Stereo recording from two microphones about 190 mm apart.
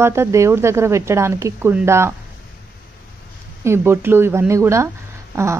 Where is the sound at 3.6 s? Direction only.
15° right (ahead or behind).